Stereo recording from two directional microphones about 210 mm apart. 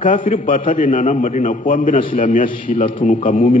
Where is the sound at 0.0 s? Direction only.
40° left (ahead or behind).